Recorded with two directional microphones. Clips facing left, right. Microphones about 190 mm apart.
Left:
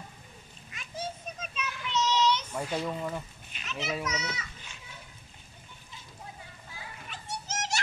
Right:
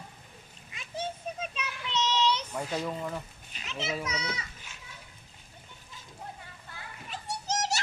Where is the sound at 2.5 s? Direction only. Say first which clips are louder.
Left 1 dB; centre (ahead or behind).